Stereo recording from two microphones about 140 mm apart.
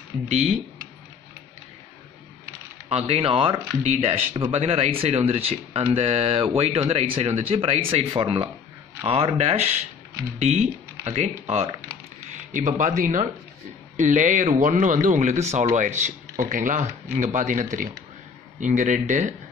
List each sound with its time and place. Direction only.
0.3 s speech: 50° right (ahead or behind)
2.9 s speech: 45° right (ahead or behind)
3.8 s speech: 50° right (ahead or behind)
12.3 s speech: 65° right (ahead or behind)